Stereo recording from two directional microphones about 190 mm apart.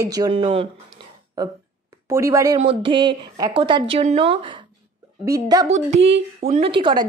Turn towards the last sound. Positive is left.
turn(degrees=-25)  # may be behind; listen again after turning